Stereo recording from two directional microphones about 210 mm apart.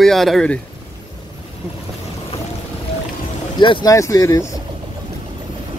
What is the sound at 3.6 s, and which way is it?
Speech, 20° left (ahead or behind).